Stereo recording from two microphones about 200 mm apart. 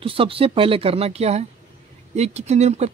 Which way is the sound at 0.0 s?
25° right (ahead or behind).